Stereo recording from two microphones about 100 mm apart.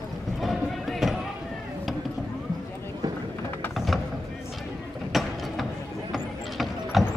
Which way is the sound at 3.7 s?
Centre (ahead or behind).